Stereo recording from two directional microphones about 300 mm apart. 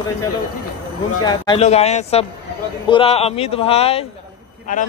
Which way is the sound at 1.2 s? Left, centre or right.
Centre.